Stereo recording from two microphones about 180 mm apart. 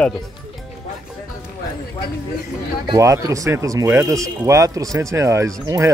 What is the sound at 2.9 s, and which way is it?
Speech, 20° right (ahead or behind).